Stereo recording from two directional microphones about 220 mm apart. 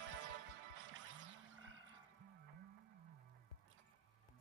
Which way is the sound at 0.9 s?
60° right (ahead or behind).